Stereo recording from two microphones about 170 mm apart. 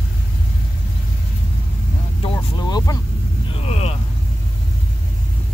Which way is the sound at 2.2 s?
25° left (ahead or behind).